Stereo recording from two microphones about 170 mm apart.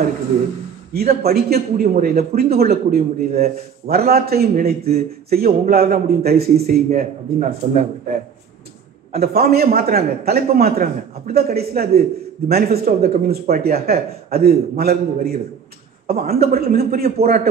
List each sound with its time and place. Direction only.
0.9 s speech: 65° right (ahead or behind)
9.1 s speech: 65° right (ahead or behind)